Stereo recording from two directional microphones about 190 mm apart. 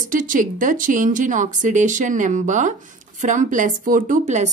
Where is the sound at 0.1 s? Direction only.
45° right (ahead or behind).